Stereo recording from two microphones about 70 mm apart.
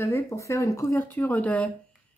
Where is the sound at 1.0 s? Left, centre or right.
Left.